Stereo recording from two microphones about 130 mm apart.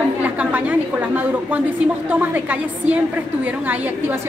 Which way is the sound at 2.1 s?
15° right (ahead or behind).